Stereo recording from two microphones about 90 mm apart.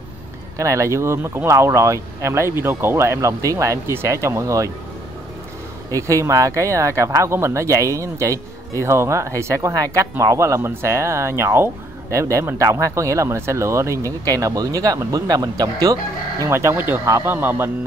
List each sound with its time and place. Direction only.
0.6 s speech: 35° right (ahead or behind)
5.9 s speech: 35° right (ahead or behind)
16.5 s speech: 25° right (ahead or behind)
17.0 s speech: 35° right (ahead or behind)
17.3 s speech: 20° right (ahead or behind)